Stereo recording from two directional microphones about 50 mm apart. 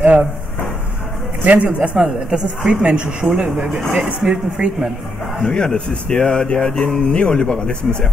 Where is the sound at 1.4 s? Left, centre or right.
Right.